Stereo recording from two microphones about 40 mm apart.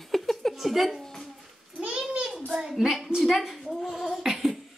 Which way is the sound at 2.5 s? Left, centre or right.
Centre.